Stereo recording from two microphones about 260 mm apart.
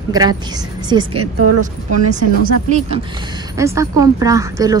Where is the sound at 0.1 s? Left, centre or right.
Centre.